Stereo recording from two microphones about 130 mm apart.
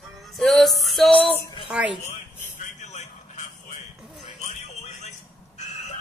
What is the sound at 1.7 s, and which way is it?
Speech, 10° right (ahead or behind).